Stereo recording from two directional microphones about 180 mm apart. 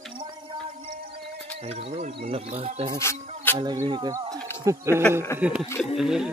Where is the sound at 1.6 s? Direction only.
35° right (ahead or behind).